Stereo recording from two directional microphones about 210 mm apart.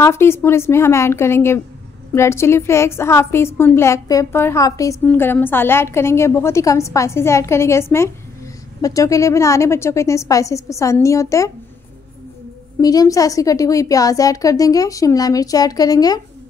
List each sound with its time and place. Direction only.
0.0 s a woman's voice: 10° left (ahead or behind)
12.8 s a woman's voice: 15° left (ahead or behind)